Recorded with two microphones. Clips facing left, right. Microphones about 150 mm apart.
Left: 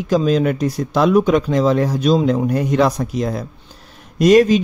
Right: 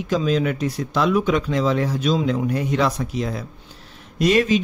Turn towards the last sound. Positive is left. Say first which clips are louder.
# left 6 dB
turn(degrees=40)  # may be behind; listen again after turning